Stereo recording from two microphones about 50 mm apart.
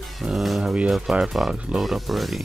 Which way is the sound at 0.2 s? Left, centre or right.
Centre.